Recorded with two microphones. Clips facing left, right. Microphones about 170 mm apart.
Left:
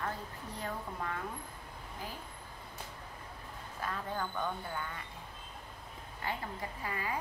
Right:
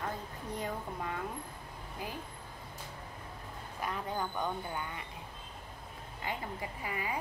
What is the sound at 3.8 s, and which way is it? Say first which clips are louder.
Speech: right 1 dB; 15° right (ahead or behind).